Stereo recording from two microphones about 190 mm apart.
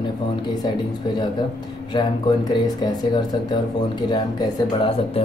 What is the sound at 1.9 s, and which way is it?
Speech, 25° left (ahead or behind).